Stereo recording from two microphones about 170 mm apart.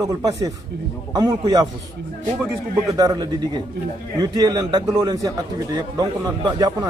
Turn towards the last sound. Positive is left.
turn(degrees=-25)  # may be behind; listen again after turning